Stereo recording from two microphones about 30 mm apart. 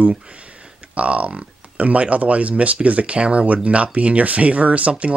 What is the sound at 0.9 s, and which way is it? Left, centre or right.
Speech, right.